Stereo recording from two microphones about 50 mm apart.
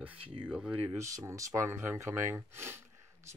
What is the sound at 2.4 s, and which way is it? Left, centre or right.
Speech, right.